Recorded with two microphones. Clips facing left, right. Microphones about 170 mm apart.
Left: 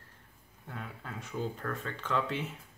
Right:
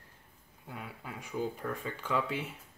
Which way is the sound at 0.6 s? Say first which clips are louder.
Even; 10° right (ahead or behind).